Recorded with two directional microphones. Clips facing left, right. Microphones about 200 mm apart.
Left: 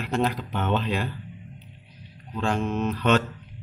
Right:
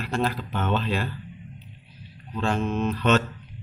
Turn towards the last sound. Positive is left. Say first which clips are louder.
# even
turn(degrees=10)  # may be behind; listen again after turning